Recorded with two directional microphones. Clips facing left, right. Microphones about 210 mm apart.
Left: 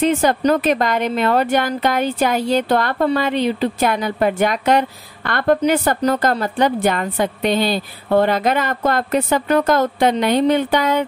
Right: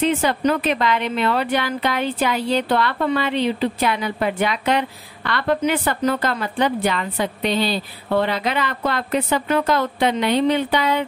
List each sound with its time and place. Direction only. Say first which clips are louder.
0.0 s a woman's voice: left 3 dB; 45° left (ahead or behind)